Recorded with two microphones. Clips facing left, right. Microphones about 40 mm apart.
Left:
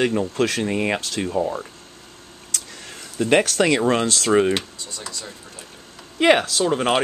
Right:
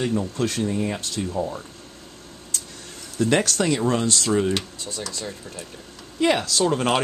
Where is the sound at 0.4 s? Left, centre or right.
Left.